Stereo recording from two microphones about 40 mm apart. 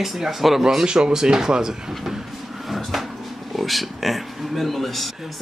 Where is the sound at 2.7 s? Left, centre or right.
Centre.